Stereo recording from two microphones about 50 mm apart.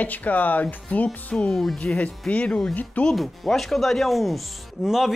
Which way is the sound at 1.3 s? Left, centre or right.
Centre.